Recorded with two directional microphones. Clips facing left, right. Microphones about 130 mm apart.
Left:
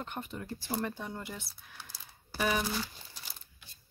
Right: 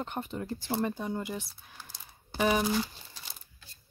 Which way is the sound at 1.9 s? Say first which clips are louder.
Right 2 dB; 25° right (ahead or behind).